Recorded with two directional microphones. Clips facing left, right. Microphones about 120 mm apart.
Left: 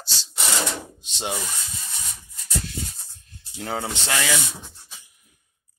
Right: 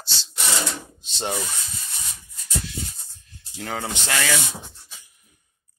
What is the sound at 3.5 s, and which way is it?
Speech, 20° left (ahead or behind).